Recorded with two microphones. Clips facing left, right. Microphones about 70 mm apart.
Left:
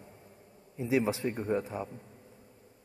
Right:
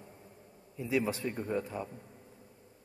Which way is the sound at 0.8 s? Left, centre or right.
Left.